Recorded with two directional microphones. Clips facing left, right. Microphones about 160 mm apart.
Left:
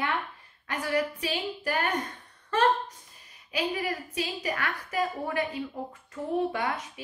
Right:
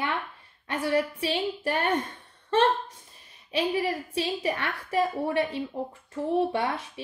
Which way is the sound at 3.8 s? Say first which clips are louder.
Right 4 dB; 30° right (ahead or behind).